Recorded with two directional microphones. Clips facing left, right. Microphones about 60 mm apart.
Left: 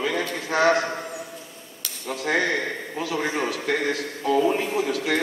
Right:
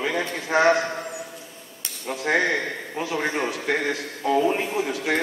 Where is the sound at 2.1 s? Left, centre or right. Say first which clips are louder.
Right 1 dB; centre.